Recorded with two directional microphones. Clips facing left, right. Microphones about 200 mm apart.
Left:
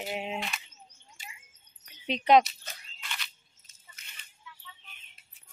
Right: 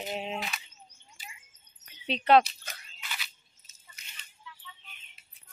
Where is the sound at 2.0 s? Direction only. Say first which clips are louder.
Even; 15° left (ahead or behind).